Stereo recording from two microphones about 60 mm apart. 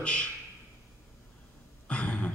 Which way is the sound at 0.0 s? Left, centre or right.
Centre.